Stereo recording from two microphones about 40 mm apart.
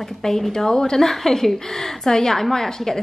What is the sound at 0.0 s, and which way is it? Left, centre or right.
A woman's voice, centre.